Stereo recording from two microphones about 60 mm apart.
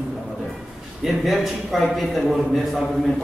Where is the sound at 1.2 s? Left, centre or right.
Centre.